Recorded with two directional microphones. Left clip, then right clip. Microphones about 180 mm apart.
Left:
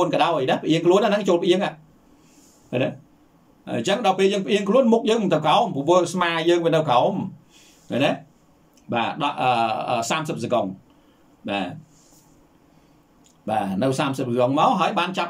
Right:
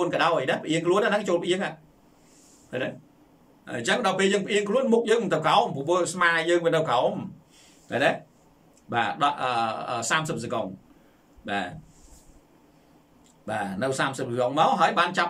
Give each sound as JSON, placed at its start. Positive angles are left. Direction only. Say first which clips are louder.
{"t": 0.0, "sound": "a man's voice", "louder": "left 3 dB", "side_deg": 20}
{"t": 2.7, "sound": "a man's voice", "louder": "left 6 dB", "side_deg": 20}
{"t": 13.5, "sound": "a man's voice", "louder": "left 5 dB", "side_deg": 15}